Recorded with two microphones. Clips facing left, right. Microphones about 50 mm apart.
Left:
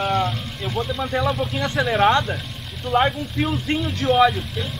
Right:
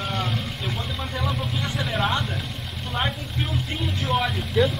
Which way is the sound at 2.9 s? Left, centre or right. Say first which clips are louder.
Left 9 dB; left.